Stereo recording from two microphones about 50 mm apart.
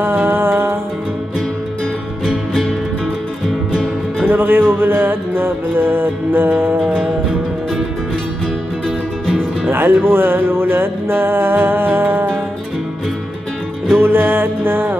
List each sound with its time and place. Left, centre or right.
0.0 s music: right
2.2 s music: centre
4.3 s music: right
9.7 s music: right
13.9 s music: right